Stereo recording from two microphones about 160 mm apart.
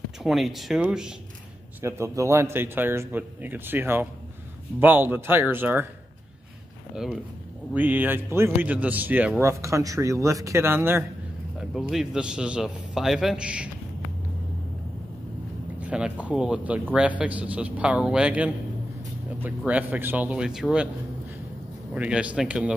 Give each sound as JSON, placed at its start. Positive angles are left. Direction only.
{"t": 0.2, "sound": "a man's voice", "side_deg": 0}
{"t": 1.8, "sound": "a man's voice", "side_deg": -15}
{"t": 7.7, "sound": "a man's voice", "side_deg": -10}
{"t": 11.7, "sound": "a man's voice", "side_deg": 0}
{"t": 15.8, "sound": "a man's voice", "side_deg": -10}
{"t": 21.9, "sound": "a man's voice", "side_deg": -10}